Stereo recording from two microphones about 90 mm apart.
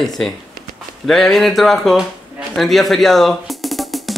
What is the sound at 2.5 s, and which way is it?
Music, centre (ahead or behind).